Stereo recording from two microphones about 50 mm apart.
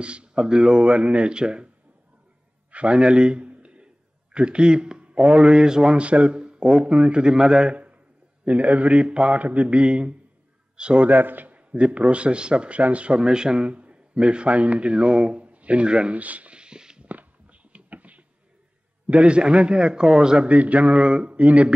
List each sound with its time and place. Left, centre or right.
0.0 s a man's voice: right
2.7 s a man's voice: right
11.1 s a man's voice: right
16.2 s a sound: right
17.1 s a sound: right
19.0 s a man's voice: right
20.4 s a man's voice: right